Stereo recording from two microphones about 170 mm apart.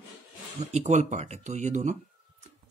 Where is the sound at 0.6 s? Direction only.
40° right (ahead or behind).